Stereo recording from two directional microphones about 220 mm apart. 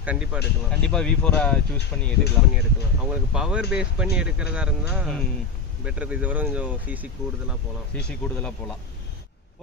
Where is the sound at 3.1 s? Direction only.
5° right (ahead or behind).